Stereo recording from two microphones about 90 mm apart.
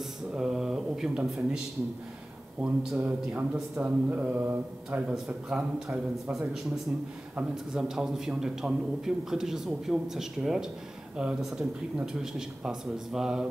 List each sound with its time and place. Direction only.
0.3 s speech: 5° right (ahead or behind)
2.6 s a man's voice: 5° right (ahead or behind)
3.0 s a man's voice: 20° right (ahead or behind)